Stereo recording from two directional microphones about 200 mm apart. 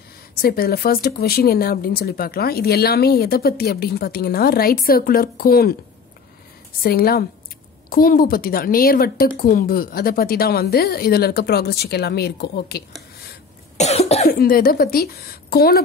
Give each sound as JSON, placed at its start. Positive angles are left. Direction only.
{"t": 0.3, "sound": "speech", "side_deg": 50}
{"t": 6.8, "sound": "speech", "side_deg": 50}
{"t": 13.7, "sound": "cough", "side_deg": 30}
{"t": 14.2, "sound": "a woman's voice", "side_deg": 50}